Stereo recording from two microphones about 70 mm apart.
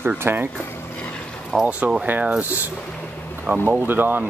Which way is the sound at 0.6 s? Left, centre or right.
Left.